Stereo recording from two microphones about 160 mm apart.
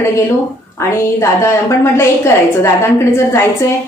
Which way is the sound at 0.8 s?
15° left (ahead or behind).